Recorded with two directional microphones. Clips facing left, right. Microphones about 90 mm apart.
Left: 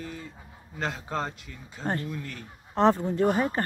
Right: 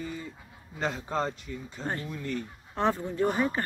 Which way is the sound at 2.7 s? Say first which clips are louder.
Left 6 dB; 35° left (ahead or behind).